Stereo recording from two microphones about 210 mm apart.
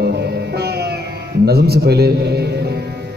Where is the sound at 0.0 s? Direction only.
50° right (ahead or behind).